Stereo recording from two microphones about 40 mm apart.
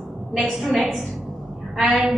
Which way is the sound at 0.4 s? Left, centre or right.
Centre.